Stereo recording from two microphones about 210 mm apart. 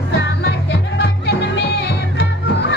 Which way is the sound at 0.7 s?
55° left (ahead or behind).